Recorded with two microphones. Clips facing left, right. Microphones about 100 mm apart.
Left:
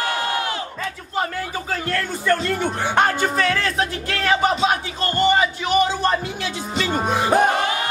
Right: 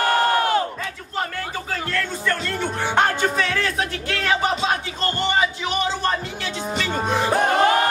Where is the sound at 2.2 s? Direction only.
10° left (ahead or behind).